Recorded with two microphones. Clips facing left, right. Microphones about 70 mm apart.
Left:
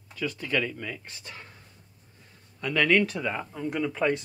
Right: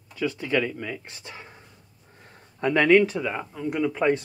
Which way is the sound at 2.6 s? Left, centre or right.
Right.